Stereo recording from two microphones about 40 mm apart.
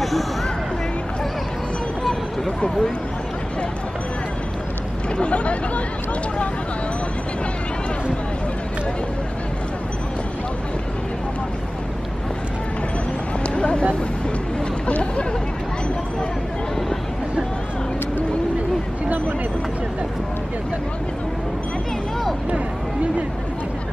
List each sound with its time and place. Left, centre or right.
2.4 s speech: centre
5.1 s speech: left
13.4 s vehicle: left
14.9 s speech: left